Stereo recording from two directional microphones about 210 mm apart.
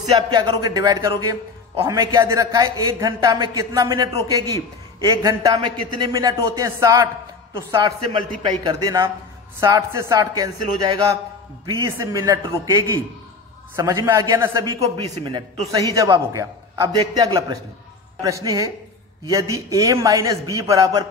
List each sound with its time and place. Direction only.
0.3 s a man's voice: 20° right (ahead or behind)